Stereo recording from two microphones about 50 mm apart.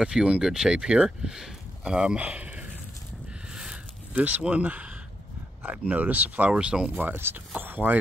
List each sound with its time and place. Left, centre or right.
0.0 s speech: centre
2.0 s speech: right
4.1 s speech: right
6.5 s speech: centre
7.5 s speech: right